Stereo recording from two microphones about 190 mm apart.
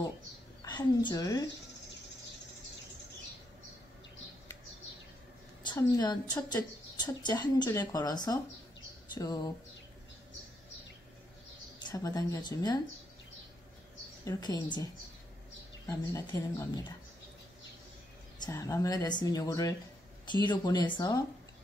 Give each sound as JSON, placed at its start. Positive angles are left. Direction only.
{"t": 0.6, "sound": "a woman's voice", "side_deg": 25}
{"t": 5.7, "sound": "a woman's voice", "side_deg": 20}
{"t": 11.8, "sound": "a woman's voice", "side_deg": 20}
{"t": 14.2, "sound": "a woman's voice", "side_deg": 20}
{"t": 15.9, "sound": "speech", "side_deg": 15}
{"t": 18.4, "sound": "a woman's voice", "side_deg": 15}